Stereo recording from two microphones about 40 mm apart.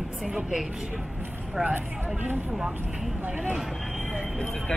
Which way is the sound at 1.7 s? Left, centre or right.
Right.